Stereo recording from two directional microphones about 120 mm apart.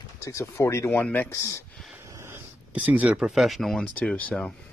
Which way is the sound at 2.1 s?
20° right (ahead or behind).